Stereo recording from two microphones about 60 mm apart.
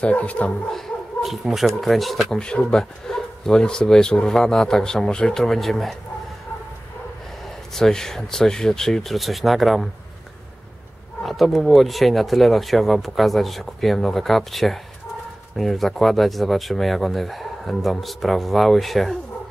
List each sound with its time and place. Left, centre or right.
0.0 s speech: left
0.7 s speech: centre
2.3 s speech: centre
7.7 s speech: centre
11.2 s speech: centre